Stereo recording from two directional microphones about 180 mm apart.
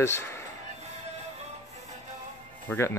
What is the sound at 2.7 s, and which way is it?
Speech, 15° left (ahead or behind).